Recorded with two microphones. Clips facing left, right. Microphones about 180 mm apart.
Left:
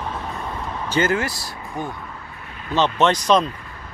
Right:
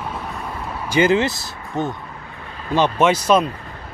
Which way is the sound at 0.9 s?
15° right (ahead or behind).